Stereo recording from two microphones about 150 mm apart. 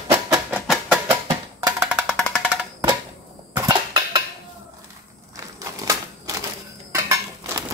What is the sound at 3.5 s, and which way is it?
Cap gun, 25° right (ahead or behind).